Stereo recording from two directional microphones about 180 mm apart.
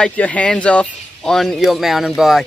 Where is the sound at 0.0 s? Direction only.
10° left (ahead or behind).